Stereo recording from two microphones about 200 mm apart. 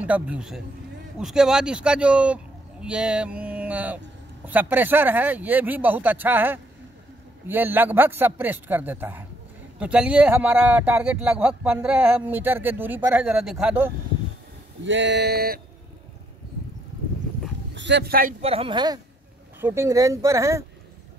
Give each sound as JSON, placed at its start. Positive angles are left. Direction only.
{"t": 0.0, "sound": "speech", "side_deg": -5}
{"t": 14.8, "sound": "a sound", "side_deg": -65}
{"t": 17.7, "sound": "speech", "side_deg": -60}
{"t": 18.4, "sound": "a woman's voice", "side_deg": -30}